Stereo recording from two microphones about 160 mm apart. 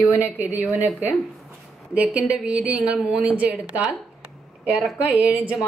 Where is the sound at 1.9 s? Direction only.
5° right (ahead or behind).